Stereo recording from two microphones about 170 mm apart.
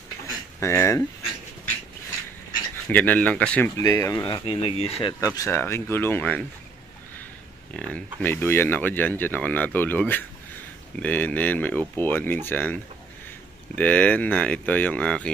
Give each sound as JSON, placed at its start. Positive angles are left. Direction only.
{"t": 0.6, "sound": "speech", "side_deg": 15}
{"t": 2.9, "sound": "speech", "side_deg": 10}
{"t": 5.2, "sound": "speech", "side_deg": 20}
{"t": 7.7, "sound": "speech", "side_deg": 5}
{"t": 13.7, "sound": "speech", "side_deg": 10}